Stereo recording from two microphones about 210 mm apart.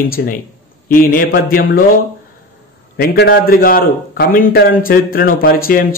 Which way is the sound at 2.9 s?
50° left (ahead or behind).